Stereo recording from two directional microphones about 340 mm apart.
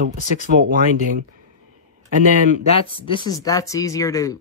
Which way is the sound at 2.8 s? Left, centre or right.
Centre.